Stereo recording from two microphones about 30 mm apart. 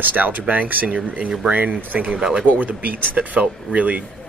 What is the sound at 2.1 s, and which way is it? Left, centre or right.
Speech, right.